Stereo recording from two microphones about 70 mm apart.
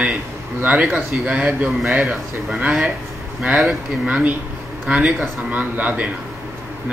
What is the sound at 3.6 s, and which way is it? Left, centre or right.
Speech, centre.